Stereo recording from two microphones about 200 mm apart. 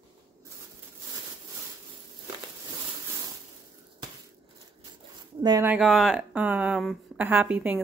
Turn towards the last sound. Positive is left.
turn(degrees=-10)  # may be behind; listen again after turning